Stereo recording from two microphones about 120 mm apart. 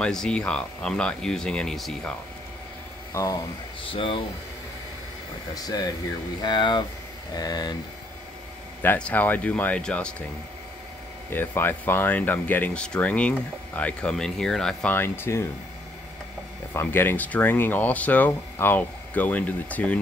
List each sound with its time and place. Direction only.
0.0 s speech: 5° left (ahead or behind)
3.1 s speech: 30° left (ahead or behind)
3.8 s speech: 45° left (ahead or behind)
5.5 s speech: 30° left (ahead or behind)
8.8 s speech: 10° left (ahead or behind)
11.3 s speech: 15° left (ahead or behind)
14.9 s speech: 20° left (ahead or behind)
16.7 s speech: 20° left (ahead or behind)